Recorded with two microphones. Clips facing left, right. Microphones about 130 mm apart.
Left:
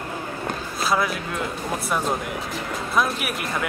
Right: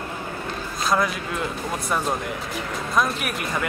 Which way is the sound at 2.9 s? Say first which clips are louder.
Even; centre (ahead or behind).